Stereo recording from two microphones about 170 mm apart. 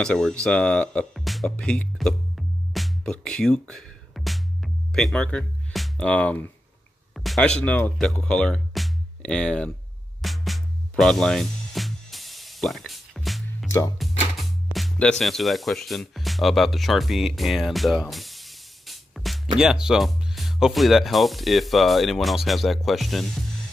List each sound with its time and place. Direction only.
0.0 s speech: 5° left (ahead or behind)
10.2 s music: centre (ahead or behind)
13.7 s speech: 20° left (ahead or behind)
14.7 s speech: centre (ahead or behind)